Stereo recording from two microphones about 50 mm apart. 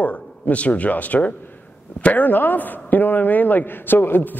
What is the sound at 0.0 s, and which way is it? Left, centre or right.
A woman's voice, left.